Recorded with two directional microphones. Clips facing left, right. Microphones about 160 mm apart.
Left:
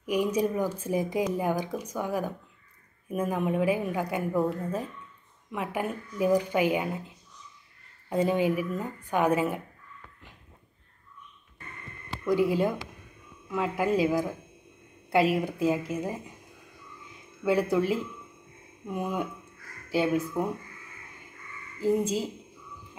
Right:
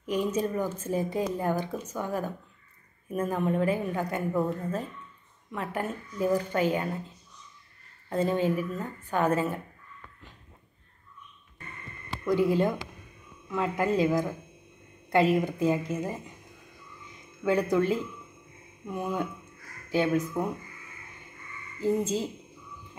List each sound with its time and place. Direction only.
0.0 s speech: 10° left (ahead or behind)
12.3 s speech: 10° left (ahead or behind)
17.4 s speech: 5° left (ahead or behind)
21.7 s speech: 10° left (ahead or behind)